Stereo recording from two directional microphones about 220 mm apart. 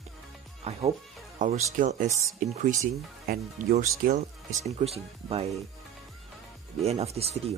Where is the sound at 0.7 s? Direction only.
30° right (ahead or behind).